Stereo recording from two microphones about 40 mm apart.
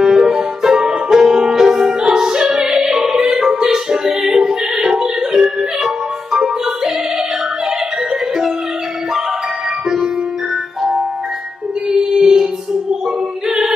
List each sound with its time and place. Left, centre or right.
0.0 s music: centre
11.9 s music: centre